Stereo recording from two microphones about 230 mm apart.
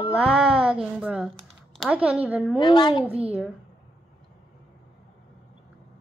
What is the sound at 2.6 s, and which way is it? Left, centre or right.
Speech, left.